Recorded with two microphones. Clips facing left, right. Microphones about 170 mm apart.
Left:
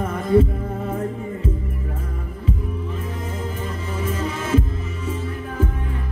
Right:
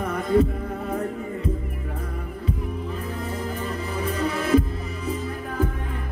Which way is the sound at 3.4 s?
35° right (ahead or behind).